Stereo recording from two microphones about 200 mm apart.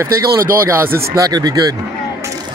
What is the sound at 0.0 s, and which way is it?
Speech, 15° right (ahead or behind).